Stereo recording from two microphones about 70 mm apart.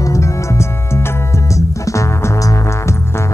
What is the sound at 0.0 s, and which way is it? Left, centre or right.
Music, left.